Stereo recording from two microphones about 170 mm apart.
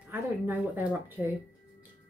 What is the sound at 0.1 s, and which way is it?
A woman's voice, 10° right (ahead or behind).